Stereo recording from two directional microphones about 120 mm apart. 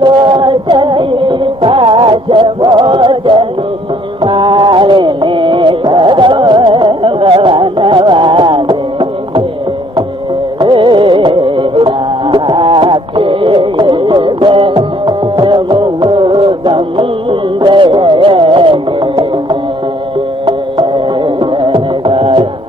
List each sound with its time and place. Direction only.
0.0 s music: 40° right (ahead or behind)
10.6 s music: 40° right (ahead or behind)
14.7 s music: 35° right (ahead or behind)
20.4 s music: 45° right (ahead or behind)